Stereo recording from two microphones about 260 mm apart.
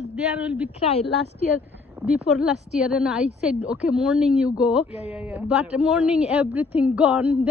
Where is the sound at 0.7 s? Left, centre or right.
Left.